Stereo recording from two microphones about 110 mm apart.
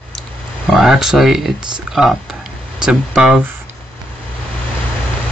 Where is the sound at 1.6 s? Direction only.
40° right (ahead or behind).